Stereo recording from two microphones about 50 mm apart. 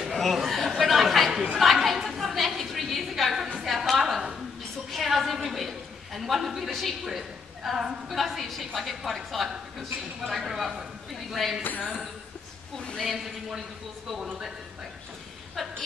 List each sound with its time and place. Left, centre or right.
0.1 s chatter: centre
1.6 s a sound: centre
8.1 s a woman's voice: centre
11.8 s speech: centre
13.1 s speech: centre